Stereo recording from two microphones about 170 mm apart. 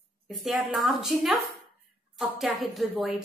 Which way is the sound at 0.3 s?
Centre (ahead or behind).